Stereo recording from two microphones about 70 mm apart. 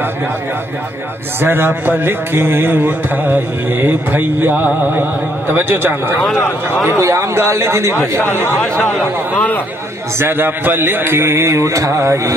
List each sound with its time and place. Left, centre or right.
1.4 s speech: right
6.9 s speech: right
8.8 s speech: left
10.1 s speech: right